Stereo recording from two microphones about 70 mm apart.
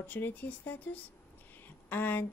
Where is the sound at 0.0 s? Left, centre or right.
Left.